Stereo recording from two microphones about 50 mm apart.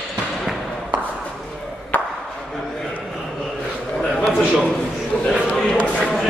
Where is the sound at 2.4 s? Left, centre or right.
Centre.